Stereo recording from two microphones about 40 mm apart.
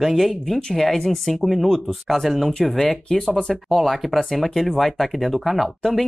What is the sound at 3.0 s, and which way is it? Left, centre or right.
Speech, centre.